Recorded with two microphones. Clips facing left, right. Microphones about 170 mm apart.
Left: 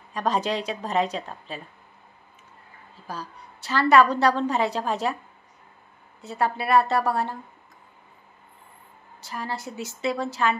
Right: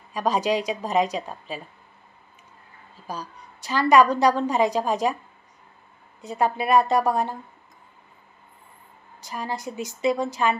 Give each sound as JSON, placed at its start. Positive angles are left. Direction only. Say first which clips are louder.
{"t": 0.1, "sound": "a woman's voice", "louder": "right 2 dB", "side_deg": -10}
{"t": 3.1, "sound": "a woman's voice", "louder": "right 2 dB", "side_deg": -15}
{"t": 6.2, "sound": "a woman's voice", "louder": "right 2 dB", "side_deg": -15}
{"t": 9.2, "sound": "a woman's voice", "louder": "right 2 dB", "side_deg": -15}